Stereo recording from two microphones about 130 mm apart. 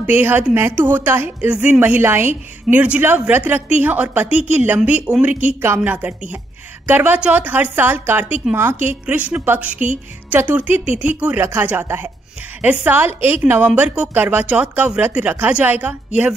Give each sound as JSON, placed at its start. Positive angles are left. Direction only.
{"t": 0.0, "sound": "a woman's voice", "side_deg": -15}